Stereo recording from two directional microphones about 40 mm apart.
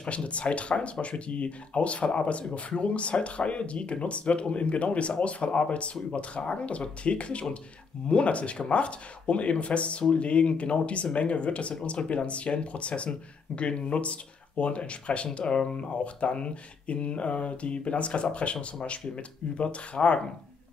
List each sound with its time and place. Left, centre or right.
0.1 s speech: left